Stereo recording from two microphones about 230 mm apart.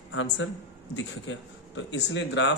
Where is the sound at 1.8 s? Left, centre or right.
Left.